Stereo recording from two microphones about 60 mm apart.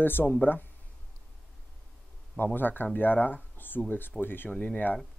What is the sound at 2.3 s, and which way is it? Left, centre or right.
Speech, left.